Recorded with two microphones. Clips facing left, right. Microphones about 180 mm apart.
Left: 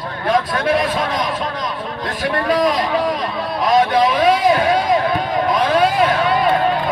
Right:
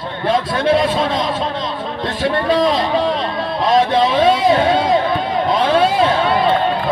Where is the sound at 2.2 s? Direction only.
25° right (ahead or behind).